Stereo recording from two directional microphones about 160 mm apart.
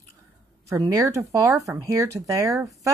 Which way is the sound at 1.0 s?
20° right (ahead or behind).